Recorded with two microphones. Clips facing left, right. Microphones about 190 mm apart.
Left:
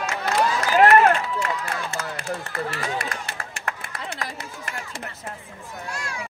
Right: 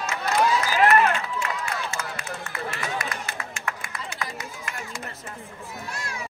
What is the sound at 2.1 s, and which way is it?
Speech, 35° left (ahead or behind).